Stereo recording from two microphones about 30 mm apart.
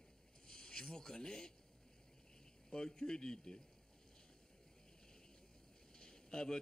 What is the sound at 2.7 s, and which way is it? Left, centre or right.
Speech, left.